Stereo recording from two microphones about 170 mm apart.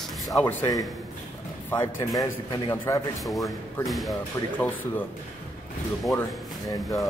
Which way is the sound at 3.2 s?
Centre (ahead or behind).